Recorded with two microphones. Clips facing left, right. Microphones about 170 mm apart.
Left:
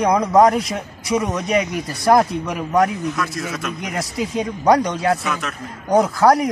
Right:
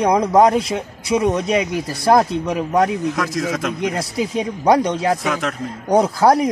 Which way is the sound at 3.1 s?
90° right.